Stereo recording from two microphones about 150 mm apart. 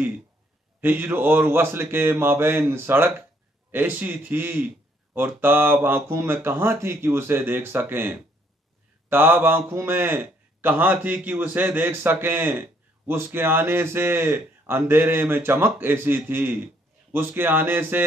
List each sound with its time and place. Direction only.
0.7 s a man's voice: 15° right (ahead or behind)